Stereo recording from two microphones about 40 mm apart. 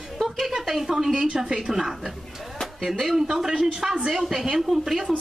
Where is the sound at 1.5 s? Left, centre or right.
Centre.